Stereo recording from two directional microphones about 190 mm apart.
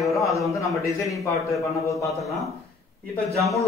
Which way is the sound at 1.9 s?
Centre (ahead or behind).